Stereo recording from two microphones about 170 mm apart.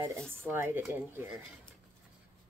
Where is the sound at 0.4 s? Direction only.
15° right (ahead or behind).